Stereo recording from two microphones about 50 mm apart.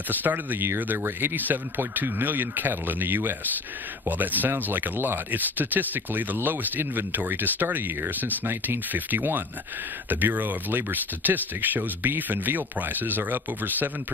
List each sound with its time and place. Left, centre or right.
0.1 s speech: right